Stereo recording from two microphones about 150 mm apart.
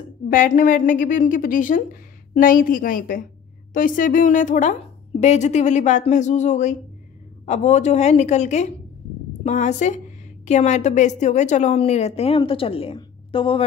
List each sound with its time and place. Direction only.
0.3 s a woman's voice: 55° left (ahead or behind); by 13.7 s 35° left (ahead or behind)